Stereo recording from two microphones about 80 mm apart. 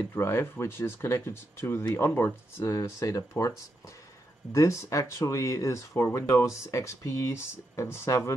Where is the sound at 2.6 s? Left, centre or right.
Left.